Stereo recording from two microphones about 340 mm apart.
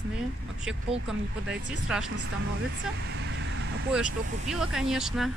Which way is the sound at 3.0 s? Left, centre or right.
Right.